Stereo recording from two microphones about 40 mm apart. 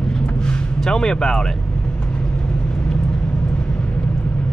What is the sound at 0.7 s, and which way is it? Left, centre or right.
Speech, centre.